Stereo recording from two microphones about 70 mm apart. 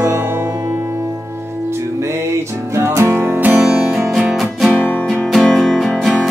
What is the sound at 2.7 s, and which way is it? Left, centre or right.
Music, right.